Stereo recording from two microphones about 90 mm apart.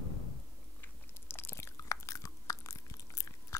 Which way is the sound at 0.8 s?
25° left (ahead or behind).